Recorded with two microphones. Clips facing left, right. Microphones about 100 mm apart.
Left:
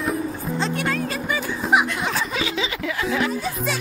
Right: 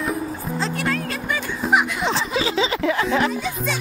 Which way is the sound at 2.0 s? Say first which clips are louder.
Right 3 dB; 30° right (ahead or behind).